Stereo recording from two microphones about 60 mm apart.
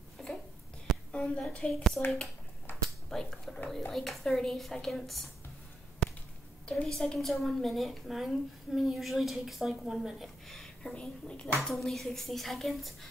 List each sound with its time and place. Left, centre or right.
0.2 s a sound: centre
1.1 s a sound: centre
1.7 s a woman's voice: centre
3.1 s a woman's voice: centre
6.0 s whip: centre
6.6 s a woman's voice: centre
6.9 s a woman's voice: centre
11.7 s a woman's voice: centre